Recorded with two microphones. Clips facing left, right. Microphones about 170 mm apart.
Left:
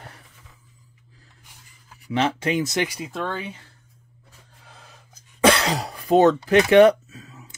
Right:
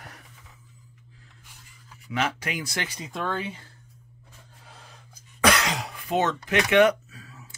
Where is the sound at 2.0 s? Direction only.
30° left (ahead or behind).